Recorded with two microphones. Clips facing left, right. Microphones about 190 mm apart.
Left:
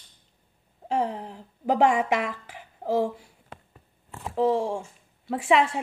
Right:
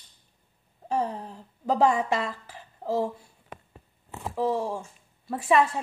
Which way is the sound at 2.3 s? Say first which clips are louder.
Left 2 dB; 20° left (ahead or behind).